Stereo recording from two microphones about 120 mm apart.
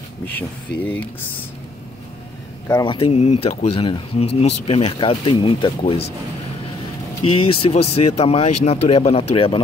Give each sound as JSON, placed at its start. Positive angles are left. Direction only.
{"t": 0.2, "sound": "speech", "side_deg": 15}
{"t": 2.8, "sound": "speech", "side_deg": 50}
{"t": 3.7, "sound": "speech", "side_deg": 45}
{"t": 7.3, "sound": "speech", "side_deg": 50}